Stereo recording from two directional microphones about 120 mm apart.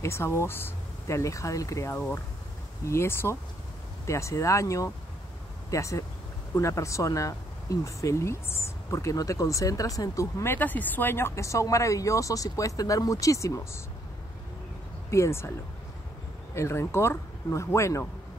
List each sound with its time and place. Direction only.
0.0 s speech: 20° left (ahead or behind)
15.0 s speech: 25° left (ahead or behind)
16.5 s speech: 20° left (ahead or behind)